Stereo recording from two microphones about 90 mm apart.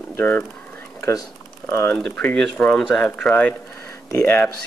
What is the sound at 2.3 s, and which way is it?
Speech, 10° left (ahead or behind).